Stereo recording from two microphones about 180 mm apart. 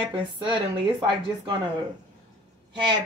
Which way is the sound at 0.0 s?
25° right (ahead or behind).